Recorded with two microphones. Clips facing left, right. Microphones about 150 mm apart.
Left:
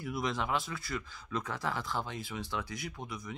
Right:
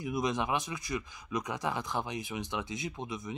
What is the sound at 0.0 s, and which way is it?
Speech, 20° right (ahead or behind).